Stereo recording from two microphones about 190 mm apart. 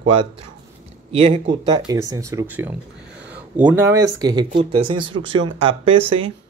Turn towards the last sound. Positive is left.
turn(degrees=-30)  # may be behind; listen again after turning